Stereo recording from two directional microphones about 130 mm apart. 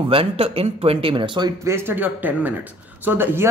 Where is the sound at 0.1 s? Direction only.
45° right (ahead or behind).